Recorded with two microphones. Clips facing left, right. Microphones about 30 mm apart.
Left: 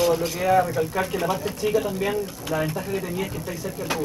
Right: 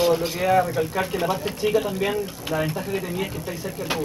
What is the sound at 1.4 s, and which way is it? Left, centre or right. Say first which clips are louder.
Speech: right 1 dB; centre.